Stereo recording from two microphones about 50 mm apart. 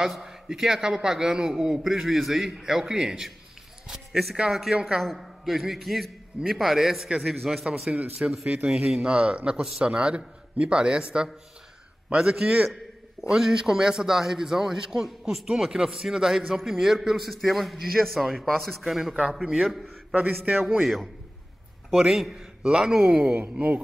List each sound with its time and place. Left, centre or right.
0.0 s a man's voice: centre
5.0 s a man's voice: centre
7.9 s a man's voice: centre
20.2 s a man's voice: right
20.8 s a man's voice: centre
21.9 s a man's voice: centre
23.4 s a man's voice: right